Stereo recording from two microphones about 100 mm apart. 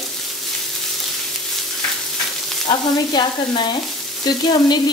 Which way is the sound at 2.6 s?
45° left (ahead or behind).